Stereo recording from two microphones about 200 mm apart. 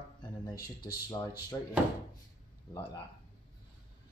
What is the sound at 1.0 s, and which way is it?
Speech, 15° left (ahead or behind).